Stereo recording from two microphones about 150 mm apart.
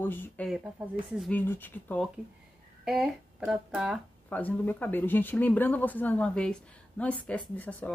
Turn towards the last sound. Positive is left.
turn(degrees=10)  # may be behind; listen again after turning